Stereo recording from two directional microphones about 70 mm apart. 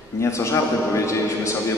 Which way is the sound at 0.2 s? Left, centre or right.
Left.